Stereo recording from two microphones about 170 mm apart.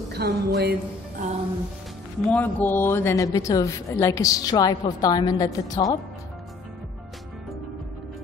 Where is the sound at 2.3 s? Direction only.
10° left (ahead or behind).